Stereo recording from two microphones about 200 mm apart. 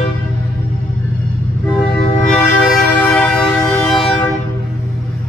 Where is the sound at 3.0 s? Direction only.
5° left (ahead or behind).